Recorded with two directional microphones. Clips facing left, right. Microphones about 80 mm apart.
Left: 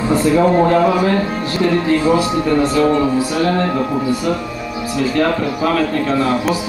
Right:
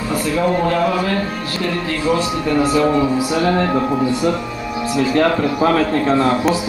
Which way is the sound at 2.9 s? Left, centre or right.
Centre.